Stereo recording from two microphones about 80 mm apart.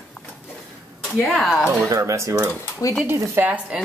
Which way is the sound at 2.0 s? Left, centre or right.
Right.